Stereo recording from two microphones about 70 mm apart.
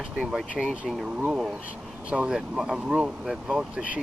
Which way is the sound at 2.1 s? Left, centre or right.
Centre.